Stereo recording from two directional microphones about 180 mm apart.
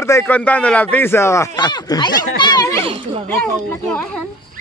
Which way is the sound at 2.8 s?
30° right (ahead or behind).